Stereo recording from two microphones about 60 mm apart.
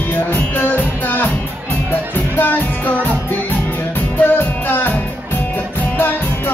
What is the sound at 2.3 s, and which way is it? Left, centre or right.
Music, left.